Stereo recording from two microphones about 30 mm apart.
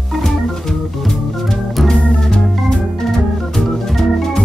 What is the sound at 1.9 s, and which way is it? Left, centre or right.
Organ, left.